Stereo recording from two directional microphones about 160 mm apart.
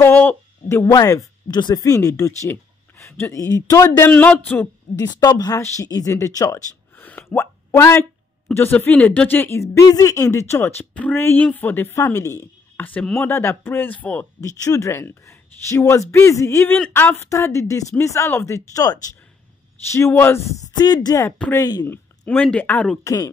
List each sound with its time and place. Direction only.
0.0 s speech: 10° left (ahead or behind)
4.1 s speech: 10° left (ahead or behind)
5.0 s speech: 25° left (ahead or behind)
20.7 s speech: 25° left (ahead or behind)
21.4 s speech: 15° left (ahead or behind)
23.0 s speech: 20° left (ahead or behind)